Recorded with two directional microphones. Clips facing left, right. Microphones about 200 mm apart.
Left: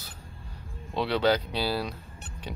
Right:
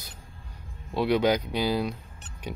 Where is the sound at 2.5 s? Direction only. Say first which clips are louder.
Right 3 dB; 15° right (ahead or behind).